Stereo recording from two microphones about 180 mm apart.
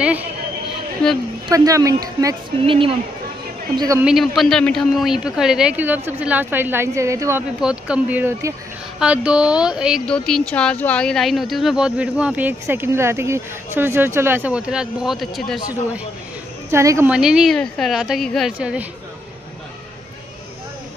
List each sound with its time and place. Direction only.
0.0 s a sound: 10° right (ahead or behind)
1.5 s a woman's voice: 20° right (ahead or behind)
2.6 s a woman's voice: 30° right (ahead or behind)
4.0 s speech: centre (ahead or behind)
16.7 s speech: 15° right (ahead or behind)
17.1 s speech: 5° right (ahead or behind)